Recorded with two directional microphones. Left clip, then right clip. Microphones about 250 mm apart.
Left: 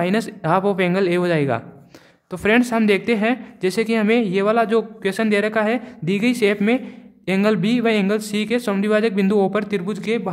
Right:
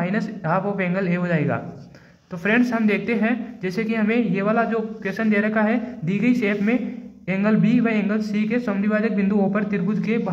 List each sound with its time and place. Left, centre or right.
0.0 s speech: left